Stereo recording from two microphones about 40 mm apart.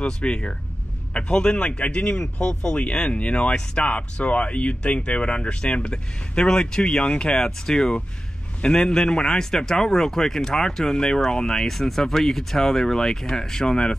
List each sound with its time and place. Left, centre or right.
0.0 s speech: left
7.3 s a man's voice: centre